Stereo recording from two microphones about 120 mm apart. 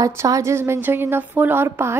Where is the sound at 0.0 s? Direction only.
25° right (ahead or behind).